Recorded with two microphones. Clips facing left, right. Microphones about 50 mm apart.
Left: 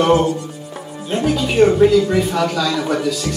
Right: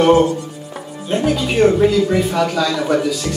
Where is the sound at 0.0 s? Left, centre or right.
Centre.